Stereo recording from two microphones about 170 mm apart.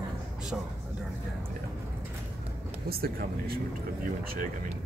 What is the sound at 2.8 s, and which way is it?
Speech, 65° right (ahead or behind).